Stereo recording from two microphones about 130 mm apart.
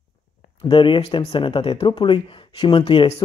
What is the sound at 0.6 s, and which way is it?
Speech, 40° left (ahead or behind).